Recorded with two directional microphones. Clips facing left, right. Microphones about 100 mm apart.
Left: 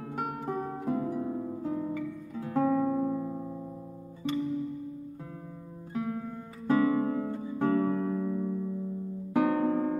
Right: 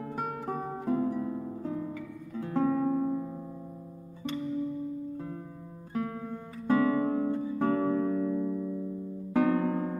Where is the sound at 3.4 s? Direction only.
15° left (ahead or behind).